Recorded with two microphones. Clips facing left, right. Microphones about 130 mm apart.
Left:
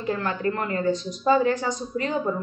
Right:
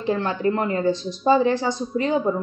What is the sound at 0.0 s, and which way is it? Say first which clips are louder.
A woman's voice: right 4 dB; 25° right (ahead or behind).